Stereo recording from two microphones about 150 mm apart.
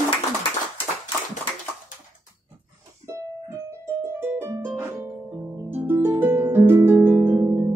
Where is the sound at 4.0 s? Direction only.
15° right (ahead or behind).